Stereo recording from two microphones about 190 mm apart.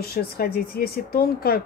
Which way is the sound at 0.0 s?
50° left (ahead or behind).